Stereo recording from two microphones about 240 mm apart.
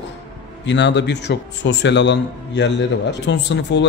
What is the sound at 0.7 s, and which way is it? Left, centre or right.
A man's voice, left.